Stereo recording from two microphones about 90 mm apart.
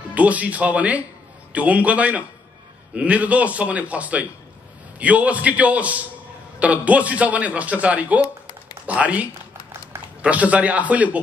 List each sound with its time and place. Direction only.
0.1 s speech: 15° right (ahead or behind)